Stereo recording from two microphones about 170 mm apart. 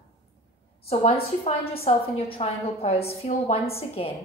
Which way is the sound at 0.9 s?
35° left (ahead or behind).